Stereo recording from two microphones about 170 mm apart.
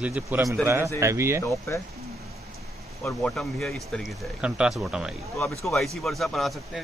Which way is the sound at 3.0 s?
5° left (ahead or behind).